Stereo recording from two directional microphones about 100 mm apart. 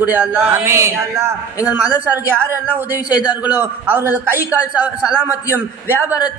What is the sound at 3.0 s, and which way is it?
Speech, 40° left (ahead or behind).